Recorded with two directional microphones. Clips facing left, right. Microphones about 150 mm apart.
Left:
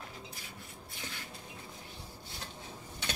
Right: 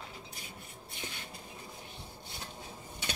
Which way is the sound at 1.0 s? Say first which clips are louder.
Right 1 dB; 20° right (ahead or behind).